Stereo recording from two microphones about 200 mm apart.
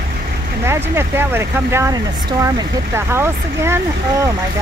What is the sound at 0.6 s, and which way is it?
Speech, 10° right (ahead or behind).